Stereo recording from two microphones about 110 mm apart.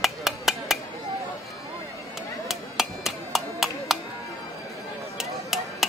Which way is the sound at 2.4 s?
Centre (ahead or behind).